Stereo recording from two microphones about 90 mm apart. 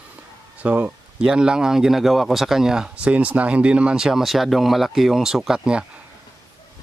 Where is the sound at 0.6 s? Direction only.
20° right (ahead or behind).